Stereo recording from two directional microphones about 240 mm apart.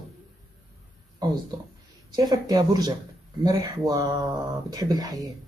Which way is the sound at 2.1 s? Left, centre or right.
Centre.